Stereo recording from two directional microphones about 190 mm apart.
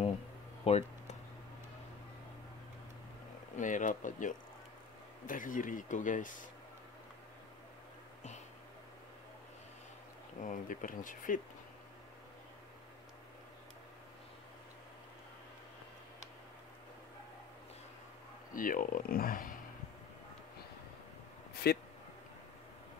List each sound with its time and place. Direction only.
0.7 s a sound: 35° left (ahead or behind)
3.5 s speech: 40° left (ahead or behind)
10.4 s speech: 45° left (ahead or behind)
18.5 s speech: 45° left (ahead or behind)
21.7 s speech: 55° left (ahead or behind)